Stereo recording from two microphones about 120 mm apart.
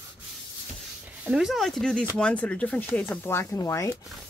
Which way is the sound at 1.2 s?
5° right (ahead or behind).